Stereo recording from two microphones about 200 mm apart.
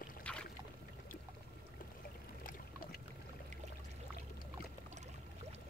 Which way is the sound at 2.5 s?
50° left (ahead or behind).